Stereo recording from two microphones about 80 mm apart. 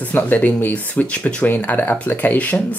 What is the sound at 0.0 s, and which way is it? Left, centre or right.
Speech, left.